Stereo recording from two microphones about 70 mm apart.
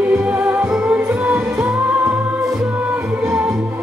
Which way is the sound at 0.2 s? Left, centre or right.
Right.